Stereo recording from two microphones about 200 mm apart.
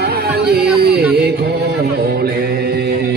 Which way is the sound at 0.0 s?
50° right (ahead or behind).